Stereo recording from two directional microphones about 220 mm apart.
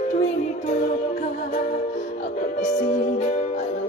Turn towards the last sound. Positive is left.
turn(degrees=30)  # may be behind; listen again after turning